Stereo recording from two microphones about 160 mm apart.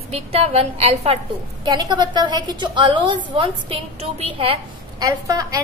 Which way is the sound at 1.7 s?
25° right (ahead or behind).